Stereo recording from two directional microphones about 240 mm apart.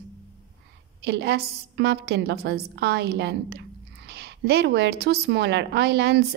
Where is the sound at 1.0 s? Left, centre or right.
Right.